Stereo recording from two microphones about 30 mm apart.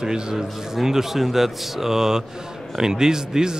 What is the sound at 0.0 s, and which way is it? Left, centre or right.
Speech, right.